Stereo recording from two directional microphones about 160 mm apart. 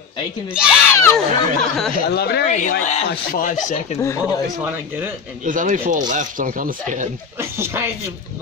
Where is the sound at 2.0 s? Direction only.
90° left.